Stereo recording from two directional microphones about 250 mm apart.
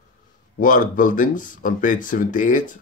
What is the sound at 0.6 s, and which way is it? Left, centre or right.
Speech, left.